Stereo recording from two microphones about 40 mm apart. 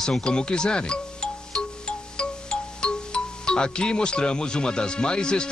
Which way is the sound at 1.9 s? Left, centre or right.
Left.